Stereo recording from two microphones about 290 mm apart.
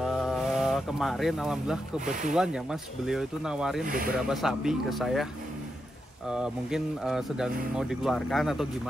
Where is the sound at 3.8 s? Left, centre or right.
Right.